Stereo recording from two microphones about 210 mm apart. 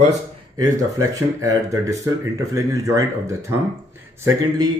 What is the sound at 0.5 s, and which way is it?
Speech, 15° right (ahead or behind).